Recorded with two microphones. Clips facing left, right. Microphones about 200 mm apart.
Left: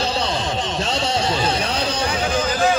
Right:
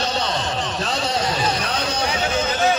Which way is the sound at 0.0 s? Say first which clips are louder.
Left 1 dB; 30° left (ahead or behind).